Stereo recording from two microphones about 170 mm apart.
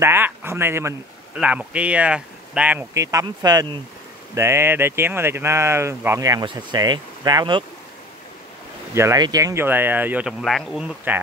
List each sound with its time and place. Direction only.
0.0 s speech: 15° right (ahead or behind)
8.9 s speech: 20° right (ahead or behind)
10.4 s speech: centre (ahead or behind)